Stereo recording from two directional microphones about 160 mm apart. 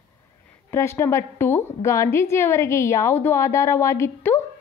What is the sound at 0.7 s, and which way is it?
A woman's voice, 15° left (ahead or behind).